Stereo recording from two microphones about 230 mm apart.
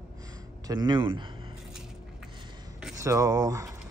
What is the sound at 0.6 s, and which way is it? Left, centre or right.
Speech, centre.